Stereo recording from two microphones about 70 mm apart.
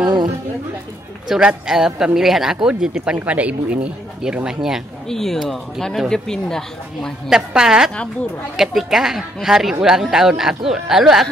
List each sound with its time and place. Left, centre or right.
0.0 s chatter: right
1.3 s a woman's voice: centre
5.0 s a woman's voice: centre
7.2 s a woman's voice: centre